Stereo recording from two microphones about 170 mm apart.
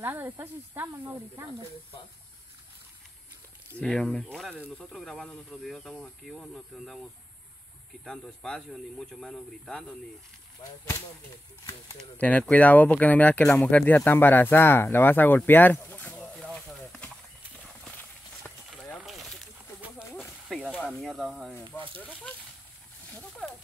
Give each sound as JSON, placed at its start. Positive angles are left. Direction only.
{"t": 0.0, "sound": "speech", "side_deg": -10}
{"t": 3.7, "sound": "speech", "side_deg": 5}
{"t": 10.6, "sound": "speech", "side_deg": 30}
{"t": 12.2, "sound": "speech", "side_deg": 10}
{"t": 18.7, "sound": "snake", "side_deg": 0}
{"t": 20.2, "sound": "speech", "side_deg": 0}